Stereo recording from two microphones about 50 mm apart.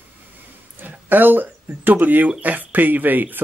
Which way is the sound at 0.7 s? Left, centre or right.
Right.